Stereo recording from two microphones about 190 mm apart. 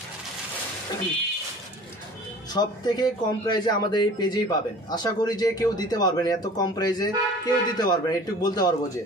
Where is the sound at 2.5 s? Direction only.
20° left (ahead or behind).